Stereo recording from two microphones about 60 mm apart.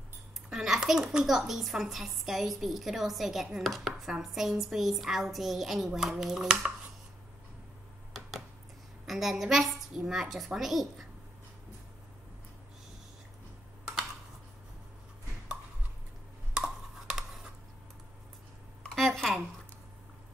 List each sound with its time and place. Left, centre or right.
0.5 s a woman's voice: centre
3.5 s chopping: centre
4.1 s a woman's voice: centre
6.4 s speech: centre
9.0 s a woman's voice: centre
16.5 s a sound: centre
18.9 s a sound: centre